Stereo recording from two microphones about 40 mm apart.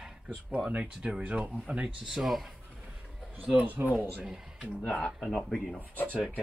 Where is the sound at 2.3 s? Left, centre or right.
Centre.